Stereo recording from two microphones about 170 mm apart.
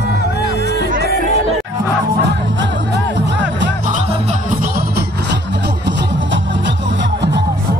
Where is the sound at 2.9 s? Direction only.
90° right.